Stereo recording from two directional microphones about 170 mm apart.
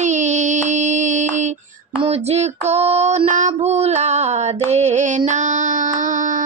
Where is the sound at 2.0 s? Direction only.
40° right (ahead or behind).